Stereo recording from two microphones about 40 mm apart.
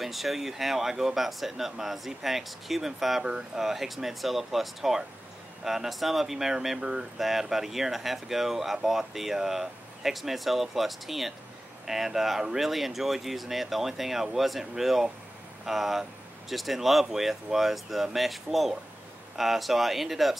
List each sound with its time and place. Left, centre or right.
0.0 s speech: centre
3.3 s speech: centre
3.6 s speech: centre
6.8 s speech: centre
7.2 s speech: centre